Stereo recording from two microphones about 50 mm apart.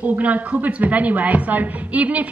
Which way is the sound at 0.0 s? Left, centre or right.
Right.